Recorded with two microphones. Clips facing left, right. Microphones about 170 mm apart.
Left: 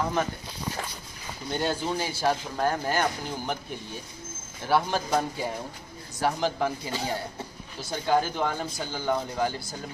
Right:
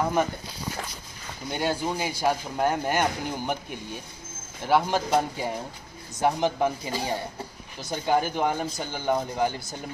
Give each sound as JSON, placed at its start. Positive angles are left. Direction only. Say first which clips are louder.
{"t": 1.5, "sound": "a man's voice", "louder": "right 1 dB", "side_deg": -10}
{"t": 4.6, "sound": "a man's voice", "louder": "right 2 dB", "side_deg": -15}